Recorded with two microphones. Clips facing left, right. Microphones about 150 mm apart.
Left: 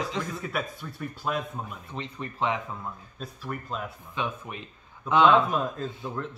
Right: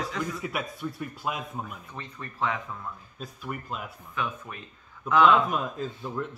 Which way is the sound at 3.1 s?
5° right (ahead or behind).